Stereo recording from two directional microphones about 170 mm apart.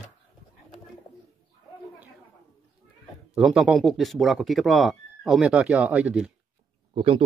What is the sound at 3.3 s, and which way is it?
Speech, 5° right (ahead or behind).